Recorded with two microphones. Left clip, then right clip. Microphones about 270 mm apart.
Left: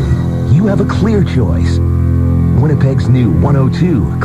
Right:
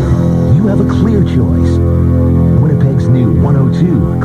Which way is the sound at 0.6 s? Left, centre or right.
Right.